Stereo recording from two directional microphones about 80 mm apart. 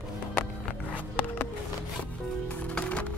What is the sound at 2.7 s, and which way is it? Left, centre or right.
Music, centre.